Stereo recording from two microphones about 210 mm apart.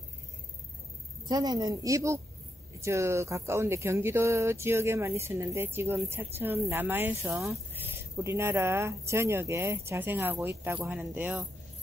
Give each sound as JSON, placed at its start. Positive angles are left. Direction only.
{"t": 1.3, "sound": "speech", "side_deg": -15}